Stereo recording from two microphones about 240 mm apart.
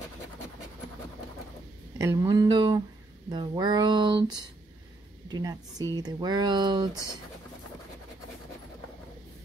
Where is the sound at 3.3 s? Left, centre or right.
Centre.